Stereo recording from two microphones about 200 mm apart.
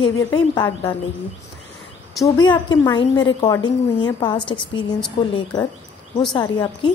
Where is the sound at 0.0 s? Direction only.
20° left (ahead or behind).